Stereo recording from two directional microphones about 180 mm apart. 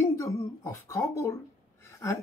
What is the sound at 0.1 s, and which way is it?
Speech, 15° left (ahead or behind).